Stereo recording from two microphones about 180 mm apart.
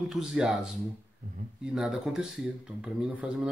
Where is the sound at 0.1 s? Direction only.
Centre (ahead or behind).